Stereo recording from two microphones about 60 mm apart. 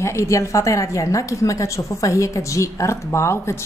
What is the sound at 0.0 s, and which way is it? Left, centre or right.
A woman's voice, left.